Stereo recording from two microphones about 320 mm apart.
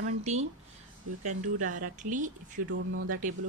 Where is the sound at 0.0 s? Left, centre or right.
Right.